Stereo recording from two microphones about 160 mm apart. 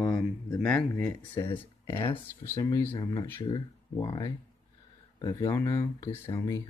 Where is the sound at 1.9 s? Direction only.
35° left (ahead or behind).